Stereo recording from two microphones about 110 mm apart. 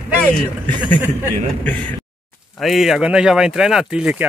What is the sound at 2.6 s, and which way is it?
Speech, centre (ahead or behind).